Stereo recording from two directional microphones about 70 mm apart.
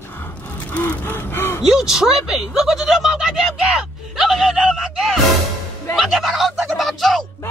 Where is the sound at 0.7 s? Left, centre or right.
Left.